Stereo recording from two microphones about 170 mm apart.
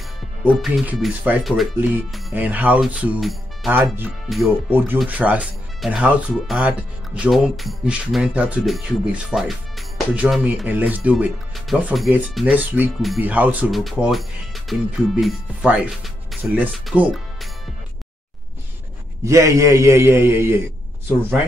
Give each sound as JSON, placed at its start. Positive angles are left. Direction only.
{"t": 0.5, "sound": "speech", "side_deg": -5}
{"t": 3.7, "sound": "speech", "side_deg": -10}
{"t": 4.3, "sound": "speech", "side_deg": 0}
{"t": 19.2, "sound": "speech", "side_deg": -15}